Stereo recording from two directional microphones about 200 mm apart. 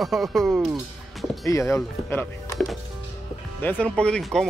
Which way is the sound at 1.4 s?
15° left (ahead or behind).